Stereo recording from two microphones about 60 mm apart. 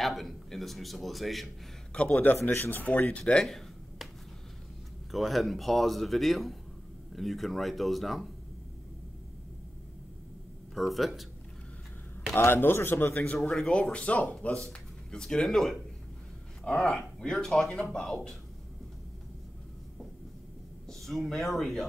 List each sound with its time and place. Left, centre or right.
0.0 s a man's voice: centre
1.9 s speech: centre
2.5 s a man's voice: left
2.9 s speech: left
3.3 s a sound: centre
5.1 s a man's voice: centre
10.7 s a man's voice: centre
12.4 s a man's voice: left
13.4 s a man's voice: centre
21.0 s a man's voice: centre